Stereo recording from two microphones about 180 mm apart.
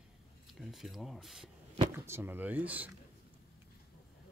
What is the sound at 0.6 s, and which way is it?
Speech, centre (ahead or behind).